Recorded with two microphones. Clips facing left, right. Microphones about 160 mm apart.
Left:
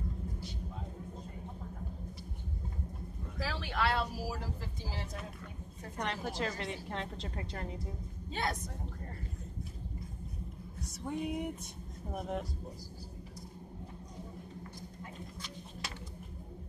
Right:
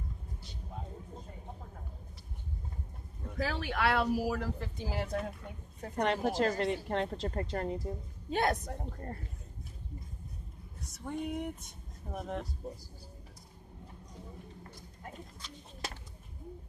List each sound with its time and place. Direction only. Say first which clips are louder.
3.3 s speech: right 3 dB; 55° right (ahead or behind)
5.9 s a woman's voice: right 7 dB; 45° right (ahead or behind)
11.1 s speech: even; 5° left (ahead or behind)